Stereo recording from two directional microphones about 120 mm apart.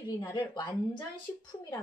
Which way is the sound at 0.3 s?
40° left (ahead or behind).